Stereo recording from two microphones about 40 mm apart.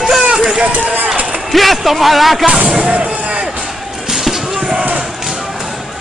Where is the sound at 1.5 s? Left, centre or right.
Centre.